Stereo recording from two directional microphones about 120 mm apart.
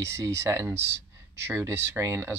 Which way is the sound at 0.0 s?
25° right (ahead or behind).